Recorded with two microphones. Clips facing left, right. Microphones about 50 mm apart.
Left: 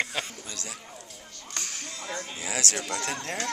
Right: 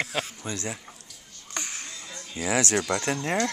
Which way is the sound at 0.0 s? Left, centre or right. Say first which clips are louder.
Right 1 dB; centre.